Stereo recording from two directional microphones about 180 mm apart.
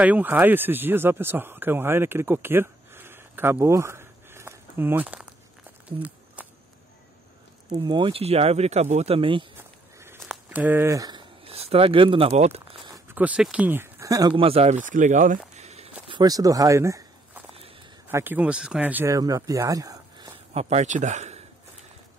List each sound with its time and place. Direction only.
0.0 s speech: 10° right (ahead or behind)
6.4 s whip: 10° right (ahead or behind)
7.7 s speech: 25° right (ahead or behind)
9.6 s a sound: 15° right (ahead or behind); by 12.9 s 35° right (ahead or behind)
12.9 s speech: 10° right (ahead or behind); by 14.8 s 35° right (ahead or behind)
14.9 s speech: 45° right (ahead or behind)
16.1 s a sound: 20° right (ahead or behind)
18.0 s speech: 10° right (ahead or behind)
20.5 s speech: 40° right (ahead or behind)